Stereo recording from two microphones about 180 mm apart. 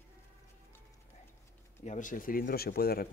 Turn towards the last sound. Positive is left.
turn(degrees=55)  # may be behind; listen again after turning